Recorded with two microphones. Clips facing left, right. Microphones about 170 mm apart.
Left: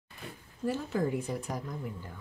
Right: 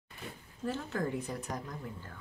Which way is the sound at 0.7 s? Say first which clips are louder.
Left 4 dB; 10° left (ahead or behind).